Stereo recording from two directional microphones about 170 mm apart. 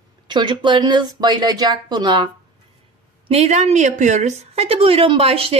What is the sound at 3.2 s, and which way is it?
A woman's voice, 40° right (ahead or behind).